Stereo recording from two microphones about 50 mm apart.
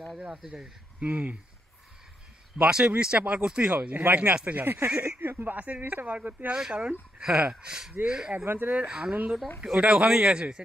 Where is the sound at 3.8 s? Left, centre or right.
Right.